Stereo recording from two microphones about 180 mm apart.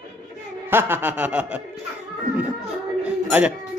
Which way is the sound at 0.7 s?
10° right (ahead or behind).